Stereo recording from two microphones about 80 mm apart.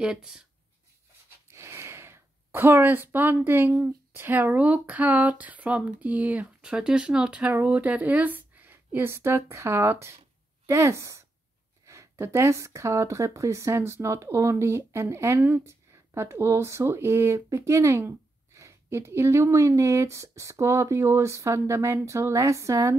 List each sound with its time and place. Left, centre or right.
0.0 s speech: centre
1.5 s speech: right